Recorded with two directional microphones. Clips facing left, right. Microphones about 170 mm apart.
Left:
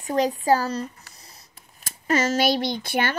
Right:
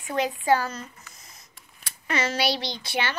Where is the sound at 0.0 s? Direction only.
40° left (ahead or behind).